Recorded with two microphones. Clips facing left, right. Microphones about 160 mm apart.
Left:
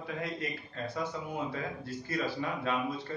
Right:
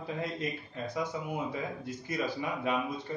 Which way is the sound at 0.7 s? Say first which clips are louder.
Left 1 dB; 15° right (ahead or behind).